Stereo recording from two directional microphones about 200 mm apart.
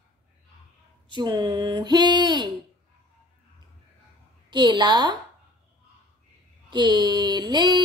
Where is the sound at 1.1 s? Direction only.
25° right (ahead or behind).